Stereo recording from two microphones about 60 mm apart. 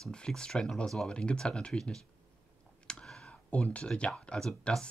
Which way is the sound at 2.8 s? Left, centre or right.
Centre.